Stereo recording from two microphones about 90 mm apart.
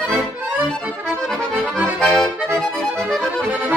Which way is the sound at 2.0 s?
10° left (ahead or behind).